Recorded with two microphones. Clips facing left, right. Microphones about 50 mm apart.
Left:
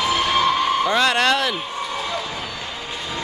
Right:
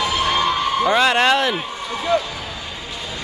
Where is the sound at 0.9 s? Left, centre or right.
Centre.